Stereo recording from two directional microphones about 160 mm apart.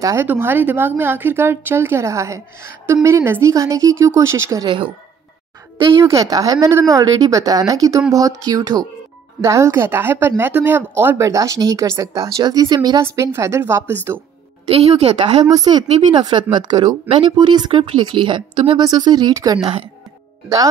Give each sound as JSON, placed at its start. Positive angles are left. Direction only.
{"t": 0.0, "sound": "speech", "side_deg": -15}
{"t": 6.0, "sound": "speech", "side_deg": -20}
{"t": 14.7, "sound": "speech", "side_deg": -40}
{"t": 15.4, "sound": "speech", "side_deg": -25}